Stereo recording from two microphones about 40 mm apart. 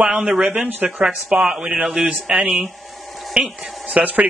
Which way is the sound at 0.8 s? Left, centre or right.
Right.